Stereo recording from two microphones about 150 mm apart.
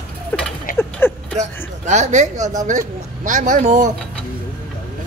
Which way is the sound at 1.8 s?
50° right (ahead or behind).